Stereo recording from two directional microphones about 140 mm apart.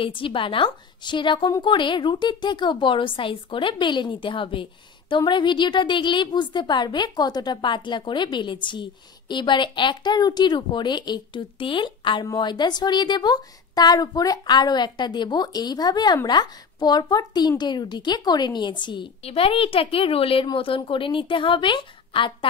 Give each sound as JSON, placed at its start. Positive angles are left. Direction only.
{"t": 0.0, "sound": "a woman's voice", "side_deg": 40}